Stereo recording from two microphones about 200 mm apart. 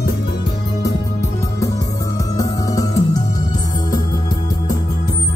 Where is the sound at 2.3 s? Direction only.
20° left (ahead or behind).